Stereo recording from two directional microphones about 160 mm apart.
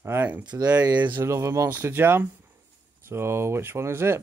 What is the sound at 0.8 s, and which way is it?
Speech, 25° right (ahead or behind).